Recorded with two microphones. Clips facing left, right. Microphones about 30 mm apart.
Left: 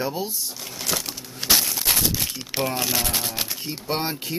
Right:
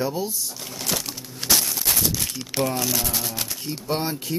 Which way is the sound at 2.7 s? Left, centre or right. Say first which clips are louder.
Left 1 dB; left.